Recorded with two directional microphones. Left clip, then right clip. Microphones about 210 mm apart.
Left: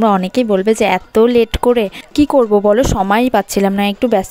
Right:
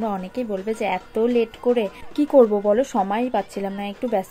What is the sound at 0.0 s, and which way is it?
Speech, 50° left (ahead or behind).